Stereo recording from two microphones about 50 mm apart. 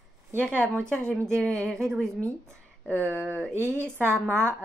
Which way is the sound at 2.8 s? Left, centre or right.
Right.